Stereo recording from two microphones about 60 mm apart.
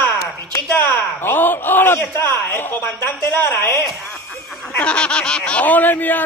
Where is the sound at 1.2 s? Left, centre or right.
Left.